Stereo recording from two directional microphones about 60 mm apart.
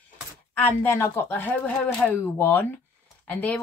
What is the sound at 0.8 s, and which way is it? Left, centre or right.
Speech, left.